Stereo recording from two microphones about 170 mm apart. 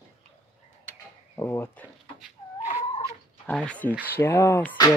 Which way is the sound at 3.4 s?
5° left (ahead or behind).